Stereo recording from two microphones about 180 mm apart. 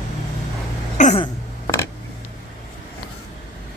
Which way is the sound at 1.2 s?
15° left (ahead or behind).